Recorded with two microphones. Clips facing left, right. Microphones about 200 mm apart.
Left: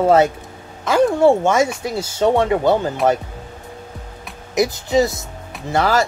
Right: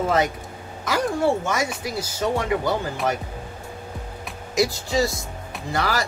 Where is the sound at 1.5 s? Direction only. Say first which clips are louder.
Left 8 dB; 25° left (ahead or behind).